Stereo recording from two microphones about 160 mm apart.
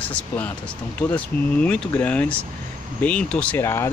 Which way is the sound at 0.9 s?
10° left (ahead or behind).